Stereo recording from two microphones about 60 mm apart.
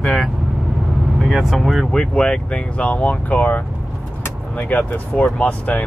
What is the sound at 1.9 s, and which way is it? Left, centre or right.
Speech, centre.